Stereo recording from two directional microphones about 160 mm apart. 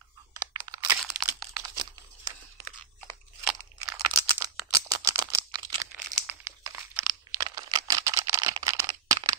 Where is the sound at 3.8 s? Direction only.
20° right (ahead or behind).